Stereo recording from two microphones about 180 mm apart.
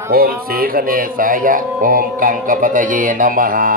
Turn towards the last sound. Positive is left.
turn(degrees=-50)  # may be behind; listen again after turning